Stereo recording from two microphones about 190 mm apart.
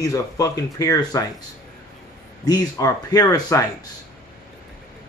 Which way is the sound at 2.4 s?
20° left (ahead or behind).